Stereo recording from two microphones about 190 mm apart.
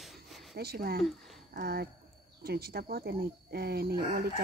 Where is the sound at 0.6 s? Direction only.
55° right (ahead or behind).